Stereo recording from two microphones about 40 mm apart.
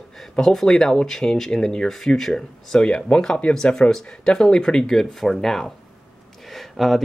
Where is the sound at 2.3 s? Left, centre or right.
Centre.